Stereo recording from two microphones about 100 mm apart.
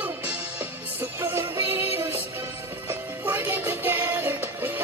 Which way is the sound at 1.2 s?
25° right (ahead or behind).